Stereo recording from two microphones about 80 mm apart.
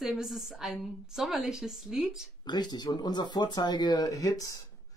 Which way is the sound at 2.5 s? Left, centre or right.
Left.